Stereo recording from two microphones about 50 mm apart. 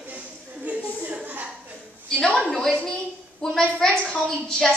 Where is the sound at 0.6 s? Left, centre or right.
Right.